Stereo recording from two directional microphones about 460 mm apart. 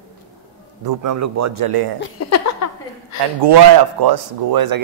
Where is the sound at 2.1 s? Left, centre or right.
Left.